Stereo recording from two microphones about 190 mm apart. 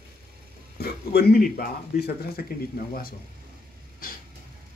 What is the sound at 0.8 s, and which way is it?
Speech, 55° left (ahead or behind).